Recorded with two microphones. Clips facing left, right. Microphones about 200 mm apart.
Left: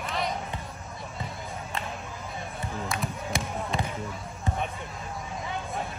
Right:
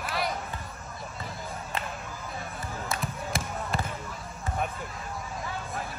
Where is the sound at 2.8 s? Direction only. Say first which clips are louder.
Right 1 dB; centre (ahead or behind).